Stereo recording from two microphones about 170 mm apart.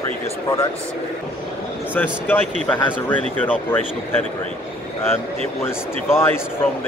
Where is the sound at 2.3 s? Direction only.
10° left (ahead or behind).